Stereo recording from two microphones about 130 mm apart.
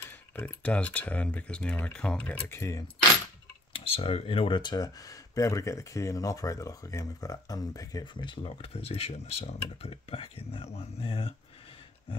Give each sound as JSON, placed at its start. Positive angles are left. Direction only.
{"t": 0.0, "sound": "speech", "side_deg": 15}
{"t": 3.7, "sound": "speech", "side_deg": 45}